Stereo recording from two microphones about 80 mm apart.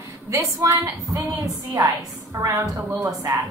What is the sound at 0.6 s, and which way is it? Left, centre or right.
A woman's voice, right.